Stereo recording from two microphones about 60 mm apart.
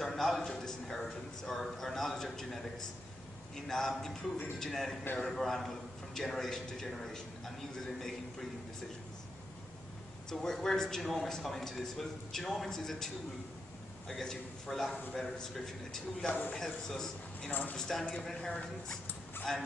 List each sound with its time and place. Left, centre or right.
0.0 s a man's voice: centre
3.6 s a man's voice: centre
10.3 s a man's voice: centre
16.3 s a man's voice: left
16.5 s a man's voice: centre
17.5 s a man's voice: left
17.7 s a man's voice: centre
19.5 s a man's voice: centre